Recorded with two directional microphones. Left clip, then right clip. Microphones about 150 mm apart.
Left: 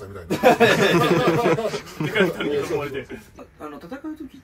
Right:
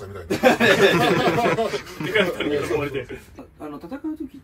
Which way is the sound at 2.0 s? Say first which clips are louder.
Left 2 dB; 15° left (ahead or behind).